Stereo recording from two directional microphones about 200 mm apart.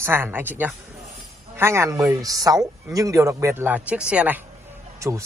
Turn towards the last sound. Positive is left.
turn(degrees=-15)  # may be behind; listen again after turning